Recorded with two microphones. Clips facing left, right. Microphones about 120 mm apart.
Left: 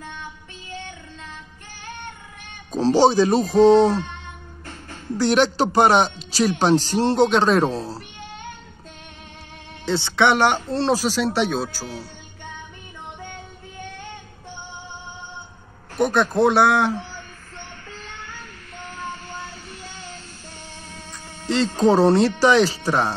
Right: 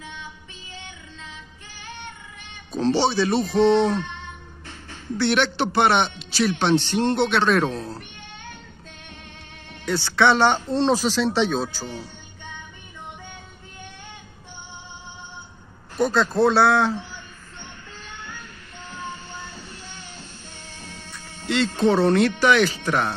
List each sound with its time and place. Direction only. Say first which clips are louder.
0.0 s music: left 2 dB; 50° left (ahead or behind)
2.7 s a man's voice: left 5 dB; 40° left (ahead or behind)
9.8 s speech: left 1 dB; 25° left (ahead or behind)
16.0 s speech: left 1 dB; 20° left (ahead or behind)
21.1 s music: left 2 dB; 35° left (ahead or behind)
21.7 s a man's voice: left 3 dB; 40° left (ahead or behind)